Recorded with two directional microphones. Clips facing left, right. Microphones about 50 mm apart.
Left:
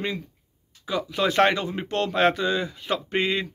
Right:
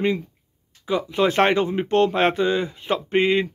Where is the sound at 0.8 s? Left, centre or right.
Right.